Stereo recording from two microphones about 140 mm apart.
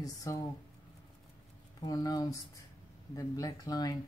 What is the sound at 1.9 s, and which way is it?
Speech, 25° left (ahead or behind).